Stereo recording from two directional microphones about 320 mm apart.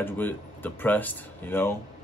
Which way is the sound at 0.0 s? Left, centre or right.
Centre.